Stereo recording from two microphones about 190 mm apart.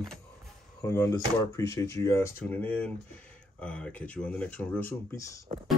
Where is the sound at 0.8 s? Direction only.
15° left (ahead or behind).